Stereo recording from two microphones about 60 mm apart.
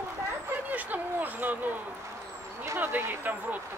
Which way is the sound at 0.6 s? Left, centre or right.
Right.